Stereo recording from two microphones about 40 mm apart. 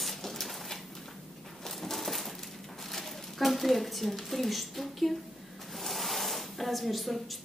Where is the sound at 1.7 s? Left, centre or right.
Centre.